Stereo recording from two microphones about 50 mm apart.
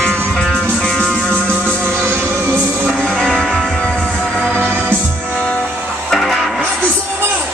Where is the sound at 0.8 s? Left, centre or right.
Centre.